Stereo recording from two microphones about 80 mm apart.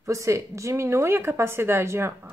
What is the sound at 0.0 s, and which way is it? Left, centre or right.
A woman's voice, right.